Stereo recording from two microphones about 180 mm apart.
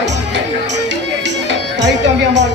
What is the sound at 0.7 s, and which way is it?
Music, 75° right (ahead or behind).